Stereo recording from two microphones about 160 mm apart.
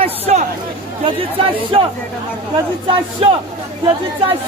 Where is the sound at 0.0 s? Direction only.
40° right (ahead or behind).